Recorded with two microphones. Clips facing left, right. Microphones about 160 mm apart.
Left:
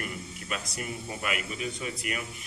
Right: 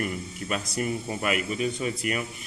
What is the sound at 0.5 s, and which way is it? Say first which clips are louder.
Speech: right 7 dB; 35° right (ahead or behind).